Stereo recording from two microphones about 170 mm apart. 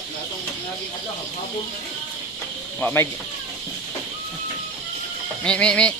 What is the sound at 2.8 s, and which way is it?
Speech, 15° left (ahead or behind).